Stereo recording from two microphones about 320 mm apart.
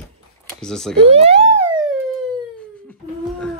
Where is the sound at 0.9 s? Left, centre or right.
Centre.